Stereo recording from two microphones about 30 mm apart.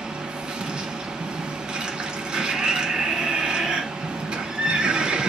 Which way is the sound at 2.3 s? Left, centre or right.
Right.